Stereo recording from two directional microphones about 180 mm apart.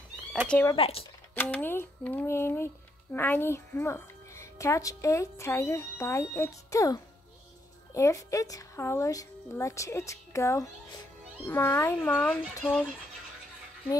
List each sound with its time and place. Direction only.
0.5 s speech: 10° left (ahead or behind)
0.7 s speech: 35° left (ahead or behind)
1.3 s speech: 10° left (ahead or behind)